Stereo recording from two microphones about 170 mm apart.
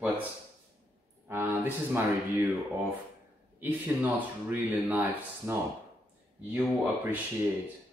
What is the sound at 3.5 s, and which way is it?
Speech, 10° right (ahead or behind).